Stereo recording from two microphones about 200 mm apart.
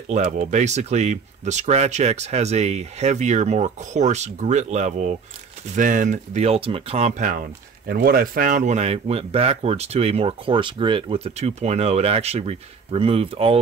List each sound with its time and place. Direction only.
0.1 s speech: 35° right (ahead or behind)